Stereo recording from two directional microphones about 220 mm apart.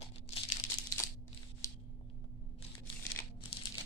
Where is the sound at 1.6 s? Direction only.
15° left (ahead or behind).